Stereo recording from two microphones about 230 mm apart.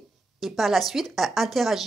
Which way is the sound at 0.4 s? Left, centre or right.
Centre.